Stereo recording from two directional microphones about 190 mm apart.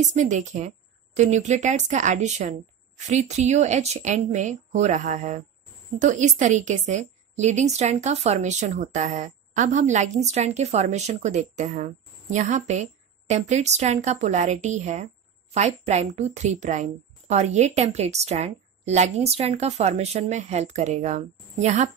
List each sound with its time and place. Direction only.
0.0 s a woman's voice: 40° right (ahead or behind)